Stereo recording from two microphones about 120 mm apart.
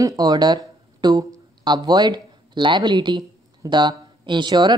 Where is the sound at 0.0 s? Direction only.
35° right (ahead or behind).